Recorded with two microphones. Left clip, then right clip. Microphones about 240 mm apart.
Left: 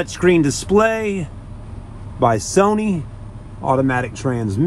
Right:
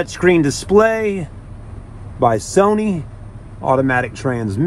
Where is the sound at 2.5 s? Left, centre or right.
Centre.